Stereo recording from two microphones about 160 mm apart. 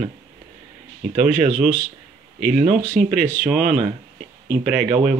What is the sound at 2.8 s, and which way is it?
Speech, 55° right (ahead or behind).